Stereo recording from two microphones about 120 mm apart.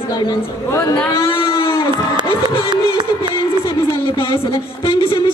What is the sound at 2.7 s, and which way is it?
Music, 40° right (ahead or behind).